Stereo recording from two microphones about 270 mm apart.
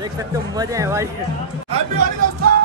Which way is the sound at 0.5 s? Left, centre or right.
Centre.